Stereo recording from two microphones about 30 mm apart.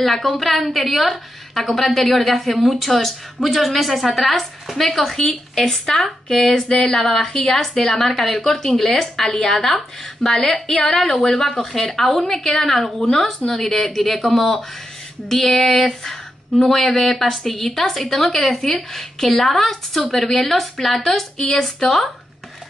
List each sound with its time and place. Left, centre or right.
0.0 s a woman's voice: centre
6.2 s a woman's voice: centre
7.0 s a woman's voice: centre
10.7 s a woman's voice: centre